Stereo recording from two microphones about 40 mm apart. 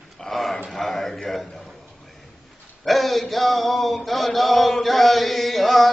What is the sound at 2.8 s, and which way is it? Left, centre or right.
Mantra, centre.